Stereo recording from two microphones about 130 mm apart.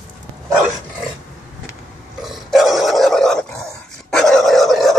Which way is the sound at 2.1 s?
Centre (ahead or behind).